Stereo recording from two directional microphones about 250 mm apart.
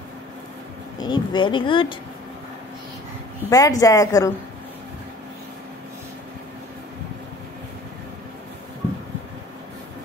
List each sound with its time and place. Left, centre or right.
1.0 s speech: centre
3.4 s speech: centre